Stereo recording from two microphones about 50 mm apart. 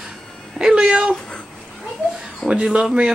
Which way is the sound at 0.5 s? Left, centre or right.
Centre.